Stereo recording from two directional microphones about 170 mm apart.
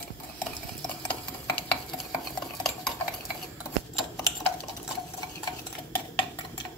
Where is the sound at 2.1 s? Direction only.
Centre (ahead or behind).